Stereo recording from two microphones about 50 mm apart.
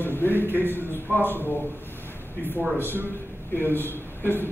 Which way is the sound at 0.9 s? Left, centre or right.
Left.